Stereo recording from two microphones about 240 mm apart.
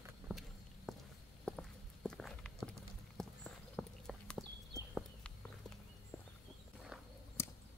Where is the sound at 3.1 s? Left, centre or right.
Centre.